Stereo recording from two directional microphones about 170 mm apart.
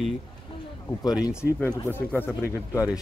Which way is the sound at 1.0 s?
25° left (ahead or behind).